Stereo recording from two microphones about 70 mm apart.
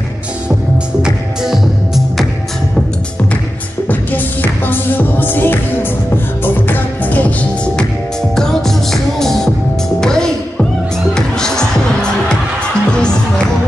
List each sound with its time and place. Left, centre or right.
1.0 s music: centre
3.9 s music: left
8.4 s music: centre